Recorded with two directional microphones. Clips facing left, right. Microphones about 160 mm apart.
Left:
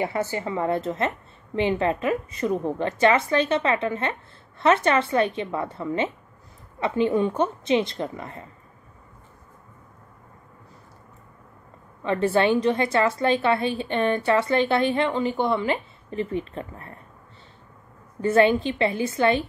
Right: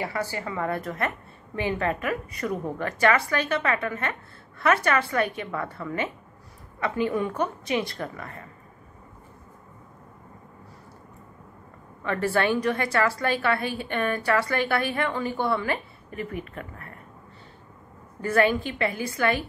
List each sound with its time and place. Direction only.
0.0 s a woman's voice: 20° left (ahead or behind)
12.0 s a woman's voice: 20° left (ahead or behind)
18.2 s a woman's voice: 25° left (ahead or behind)